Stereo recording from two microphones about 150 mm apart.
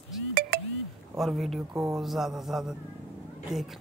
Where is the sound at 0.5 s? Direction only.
80° right.